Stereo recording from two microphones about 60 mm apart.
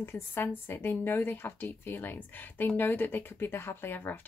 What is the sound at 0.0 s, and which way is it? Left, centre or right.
Speech, left.